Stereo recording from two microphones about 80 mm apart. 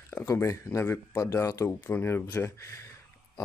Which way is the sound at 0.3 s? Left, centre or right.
Left.